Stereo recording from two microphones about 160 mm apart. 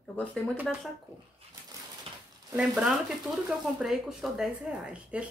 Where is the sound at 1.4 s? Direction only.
40° right (ahead or behind).